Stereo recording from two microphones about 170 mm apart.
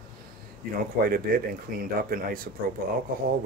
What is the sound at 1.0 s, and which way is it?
Speech, 60° right (ahead or behind).